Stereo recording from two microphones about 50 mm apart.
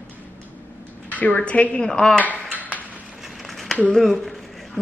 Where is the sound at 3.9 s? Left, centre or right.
Centre.